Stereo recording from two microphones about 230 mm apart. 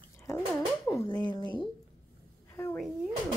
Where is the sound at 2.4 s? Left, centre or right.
Centre.